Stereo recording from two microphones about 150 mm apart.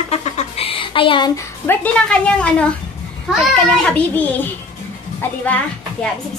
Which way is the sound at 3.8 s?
10° left (ahead or behind).